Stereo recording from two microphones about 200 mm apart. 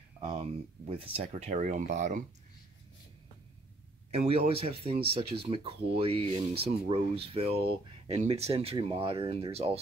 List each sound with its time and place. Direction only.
0.2 s speech: 25° right (ahead or behind)
4.1 s speech: 30° right (ahead or behind)